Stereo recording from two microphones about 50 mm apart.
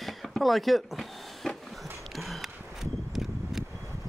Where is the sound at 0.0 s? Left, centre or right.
Centre.